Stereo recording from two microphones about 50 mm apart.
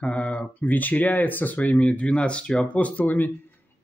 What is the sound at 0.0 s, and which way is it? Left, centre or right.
Speech, left.